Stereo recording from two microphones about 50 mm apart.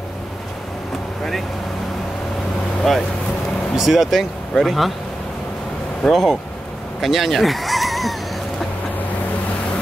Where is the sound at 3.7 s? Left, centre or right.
Centre.